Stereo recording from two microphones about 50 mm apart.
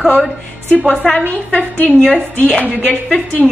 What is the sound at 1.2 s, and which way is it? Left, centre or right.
A woman's voice, left.